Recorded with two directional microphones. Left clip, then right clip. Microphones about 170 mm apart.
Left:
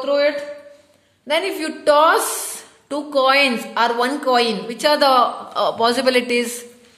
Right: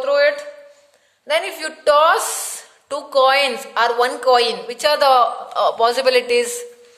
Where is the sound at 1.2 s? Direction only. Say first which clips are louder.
Even; 35° right (ahead or behind).